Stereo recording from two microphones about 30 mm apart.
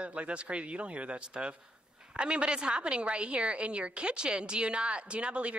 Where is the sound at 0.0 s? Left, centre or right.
Right.